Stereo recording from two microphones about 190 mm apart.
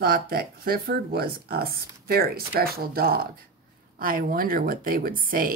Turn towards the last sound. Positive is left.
turn(degrees=-50)  # may be behind; listen again after turning